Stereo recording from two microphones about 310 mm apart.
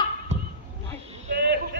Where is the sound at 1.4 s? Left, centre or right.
Right.